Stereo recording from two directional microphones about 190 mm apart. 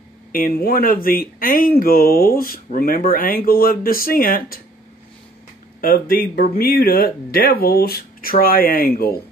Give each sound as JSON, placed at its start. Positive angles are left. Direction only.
{"t": 0.3, "sound": "speech", "side_deg": 50}
{"t": 5.8, "sound": "speech", "side_deg": 50}